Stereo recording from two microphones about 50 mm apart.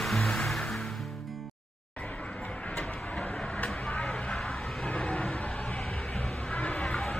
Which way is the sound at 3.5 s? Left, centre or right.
Left.